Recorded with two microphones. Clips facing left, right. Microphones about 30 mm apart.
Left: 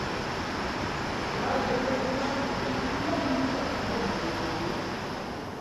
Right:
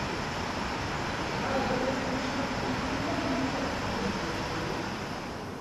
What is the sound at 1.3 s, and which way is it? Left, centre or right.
Vehicle, centre.